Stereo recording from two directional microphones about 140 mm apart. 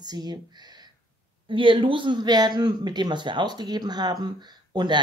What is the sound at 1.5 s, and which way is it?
A man's voice, 35° right (ahead or behind).